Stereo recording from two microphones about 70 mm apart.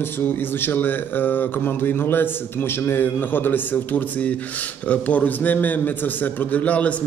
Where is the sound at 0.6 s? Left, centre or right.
Left.